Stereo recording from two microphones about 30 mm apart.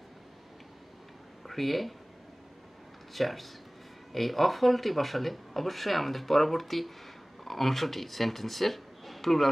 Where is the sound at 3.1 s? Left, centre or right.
Centre.